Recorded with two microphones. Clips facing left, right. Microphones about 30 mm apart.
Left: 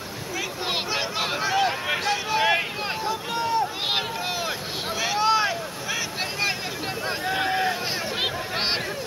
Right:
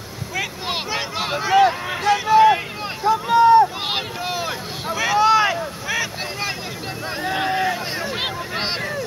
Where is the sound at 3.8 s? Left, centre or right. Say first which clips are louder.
Right 1 dB; centre.